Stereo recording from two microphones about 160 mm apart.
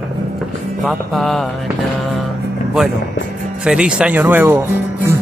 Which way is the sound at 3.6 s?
5° right (ahead or behind).